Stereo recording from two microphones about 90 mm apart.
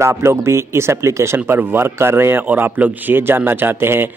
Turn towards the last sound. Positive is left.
turn(degrees=-25)  # may be behind; listen again after turning